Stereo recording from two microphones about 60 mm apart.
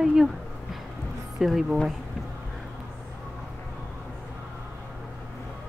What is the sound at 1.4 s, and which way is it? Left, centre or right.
Speech, centre.